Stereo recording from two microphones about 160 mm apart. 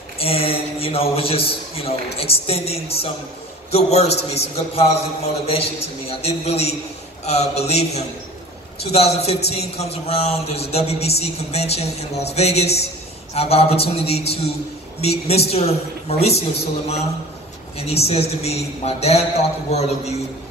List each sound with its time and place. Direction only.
0.2 s a man's voice: 35° left (ahead or behind)